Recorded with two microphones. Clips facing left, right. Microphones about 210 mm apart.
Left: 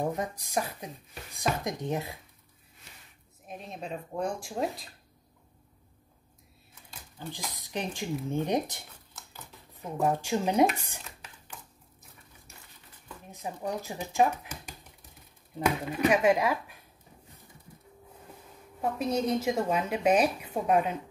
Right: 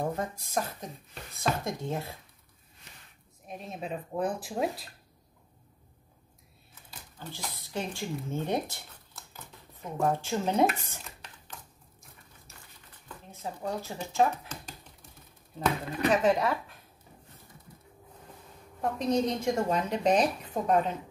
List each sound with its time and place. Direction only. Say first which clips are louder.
0.0 s a woman's voice: left 1 dB; 15° left (ahead or behind)
3.4 s speech: right 1 dB; centre (ahead or behind)
7.2 s a woman's voice: left 2 dB; 15° left (ahead or behind)
9.9 s a woman's voice: left 1 dB; 10° left (ahead or behind)
11.1 s a sound: even; 5° left (ahead or behind)
13.3 s a woman's voice: left 1 dB; 15° left (ahead or behind)
15.8 s a woman's voice: left 1 dB; 5° left (ahead or behind)
18.8 s a woman's voice: right 1 dB; 5° left (ahead or behind)